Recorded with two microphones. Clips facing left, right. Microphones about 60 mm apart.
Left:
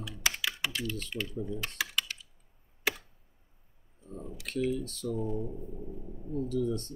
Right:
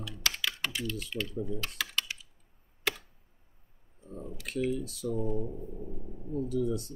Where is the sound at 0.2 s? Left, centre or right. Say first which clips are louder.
Left 1 dB; centre.